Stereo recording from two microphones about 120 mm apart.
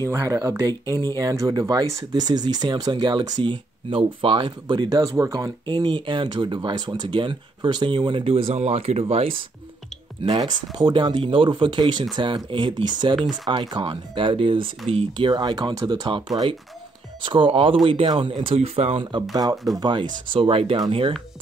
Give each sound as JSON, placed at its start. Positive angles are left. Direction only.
{"t": 0.0, "sound": "speech", "side_deg": -20}
{"t": 5.7, "sound": "speech", "side_deg": -40}
{"t": 18.3, "sound": "speech", "side_deg": -55}
{"t": 19.7, "sound": "speech", "side_deg": -35}